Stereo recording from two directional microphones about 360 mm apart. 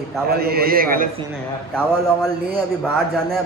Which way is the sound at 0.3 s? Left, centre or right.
Right.